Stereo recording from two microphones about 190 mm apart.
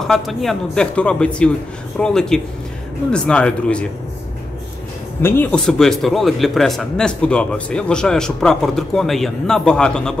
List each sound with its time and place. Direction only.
0.0 s speech: centre (ahead or behind)
5.2 s speech: 10° left (ahead or behind)